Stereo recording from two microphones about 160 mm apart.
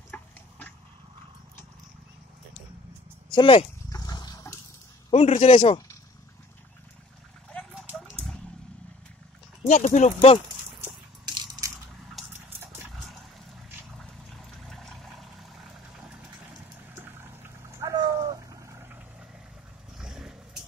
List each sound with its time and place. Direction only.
0.1 s dog: 10° left (ahead or behind)
3.3 s speech: 30° left (ahead or behind)
3.9 s dog: 25° left (ahead or behind)
5.1 s a man's voice: 40° left (ahead or behind)
7.7 s a sound: centre (ahead or behind)
9.6 s speech: 45° left (ahead or behind)
11.2 s crushing: 25° right (ahead or behind)
12.3 s water: 10° right (ahead or behind)
12.9 s dog: centre (ahead or behind)
13.9 s a sound: centre (ahead or behind)
16.0 s vehicle: 5° right (ahead or behind)
16.9 s a sound: 15° right (ahead or behind)
20.0 s vehicle: 5° right (ahead or behind)